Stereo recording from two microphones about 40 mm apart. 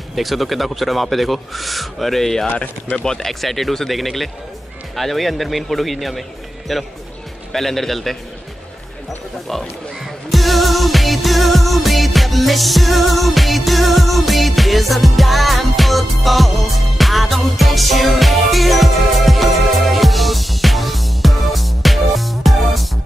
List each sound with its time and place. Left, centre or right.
0.1 s speech: centre
2.5 s speech: left
3.1 s speech: centre
10.3 s music: centre